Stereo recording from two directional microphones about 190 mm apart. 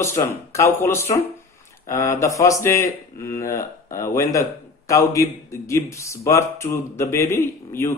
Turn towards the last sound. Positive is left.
turn(degrees=15)  # may be behind; listen again after turning